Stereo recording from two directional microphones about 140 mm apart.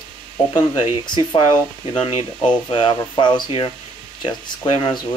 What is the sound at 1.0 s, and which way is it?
Speech, 30° left (ahead or behind).